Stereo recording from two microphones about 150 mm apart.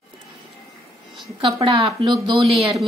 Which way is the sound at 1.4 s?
35° right (ahead or behind).